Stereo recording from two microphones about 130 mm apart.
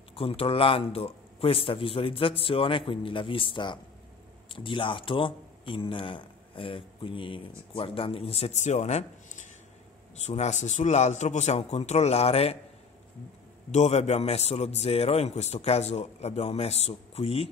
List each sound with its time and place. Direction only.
0.1 s a man's voice: 45° left (ahead or behind)
13.7 s a man's voice: 55° left (ahead or behind)